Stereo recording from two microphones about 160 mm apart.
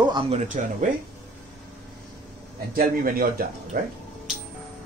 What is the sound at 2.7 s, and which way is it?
Speech, 65° right (ahead or behind).